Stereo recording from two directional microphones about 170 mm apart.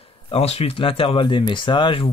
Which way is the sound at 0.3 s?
35° left (ahead or behind).